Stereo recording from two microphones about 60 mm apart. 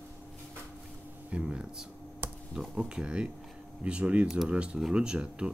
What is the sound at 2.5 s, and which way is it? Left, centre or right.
Speech, centre.